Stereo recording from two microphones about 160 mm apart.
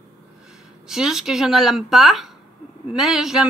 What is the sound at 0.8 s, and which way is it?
A woman's voice, 5° right (ahead or behind).